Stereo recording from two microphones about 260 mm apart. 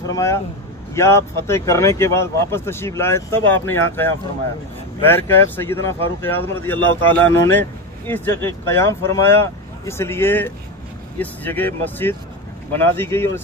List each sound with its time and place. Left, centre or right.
0.1 s speech: centre